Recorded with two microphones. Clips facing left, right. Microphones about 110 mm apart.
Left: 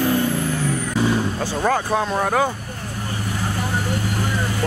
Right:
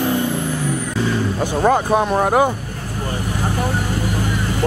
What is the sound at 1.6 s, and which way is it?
Speech, 15° right (ahead or behind).